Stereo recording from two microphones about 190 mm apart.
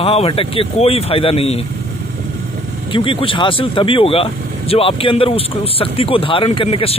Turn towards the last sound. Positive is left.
turn(degrees=30)  # may be behind; listen again after turning